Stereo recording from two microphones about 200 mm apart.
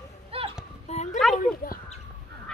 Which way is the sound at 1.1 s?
Centre (ahead or behind).